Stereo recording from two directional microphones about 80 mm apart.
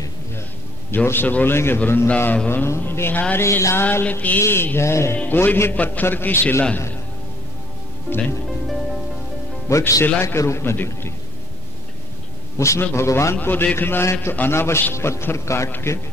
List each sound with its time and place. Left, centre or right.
0.9 s a man's voice: left
2.0 s a man's voice: centre
3.4 s a man's voice: left
4.0 s a man's voice: left
5.1 s a man's voice: left
8.1 s a man's voice: left
9.7 s a man's voice: left
12.5 s a man's voice: left